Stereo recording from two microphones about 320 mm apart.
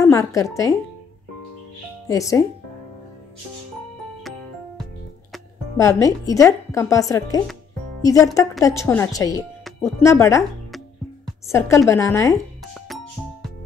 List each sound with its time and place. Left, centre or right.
0.0 s a woman's voice: centre
2.0 s speech: centre
5.3 s speech: centre
12.8 s music: centre